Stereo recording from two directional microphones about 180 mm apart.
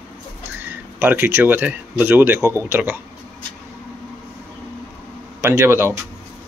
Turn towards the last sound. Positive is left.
turn(degrees=-15)  # may be behind; listen again after turning